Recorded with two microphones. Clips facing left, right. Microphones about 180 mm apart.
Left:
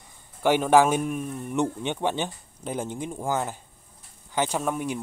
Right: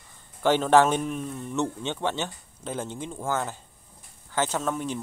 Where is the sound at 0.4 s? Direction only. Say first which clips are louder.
Left 1 dB; 10° left (ahead or behind).